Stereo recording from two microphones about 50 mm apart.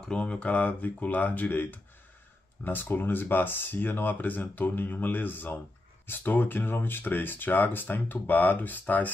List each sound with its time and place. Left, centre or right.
0.0 s speech: centre; by 9.1 s left